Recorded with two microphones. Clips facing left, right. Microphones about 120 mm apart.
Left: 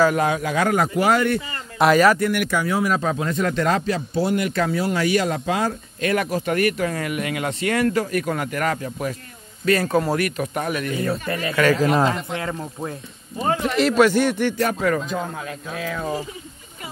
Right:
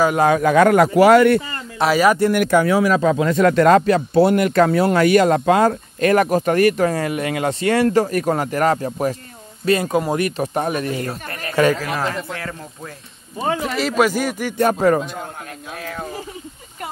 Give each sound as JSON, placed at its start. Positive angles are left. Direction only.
{"t": 0.3, "sound": "speech", "side_deg": -50}
{"t": 1.8, "sound": "a man's voice", "side_deg": -5}
{"t": 2.1, "sound": "speech", "side_deg": -35}
{"t": 2.7, "sound": "speech", "side_deg": -85}
{"t": 9.7, "sound": "a man's voice", "side_deg": -15}
{"t": 10.2, "sound": "speech", "side_deg": -30}
{"t": 11.8, "sound": "speech", "side_deg": 25}
{"t": 13.6, "sound": "a man's voice", "side_deg": 0}
{"t": 14.6, "sound": "speech", "side_deg": -40}